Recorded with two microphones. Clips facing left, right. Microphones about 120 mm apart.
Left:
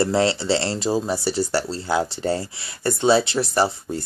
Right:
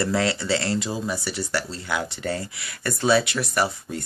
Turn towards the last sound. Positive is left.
turn(degrees=30)  # may be behind; listen again after turning